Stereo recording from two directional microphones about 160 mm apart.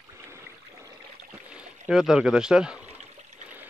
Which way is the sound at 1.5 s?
5° right (ahead or behind).